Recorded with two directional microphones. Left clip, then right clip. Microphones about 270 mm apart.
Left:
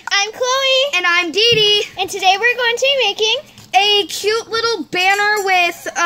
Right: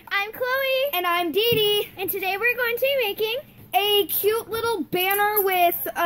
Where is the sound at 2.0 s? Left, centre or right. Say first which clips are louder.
Left 11 dB; centre.